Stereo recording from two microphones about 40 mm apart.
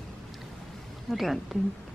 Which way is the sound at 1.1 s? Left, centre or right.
Centre.